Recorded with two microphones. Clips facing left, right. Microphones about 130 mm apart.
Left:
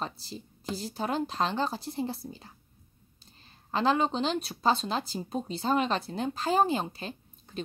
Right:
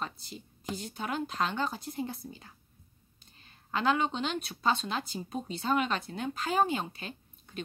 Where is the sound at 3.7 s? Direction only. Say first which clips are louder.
Left 3 dB; 30° left (ahead or behind).